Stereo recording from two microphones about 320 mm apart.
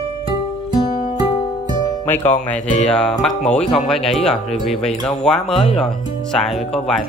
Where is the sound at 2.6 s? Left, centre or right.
Left.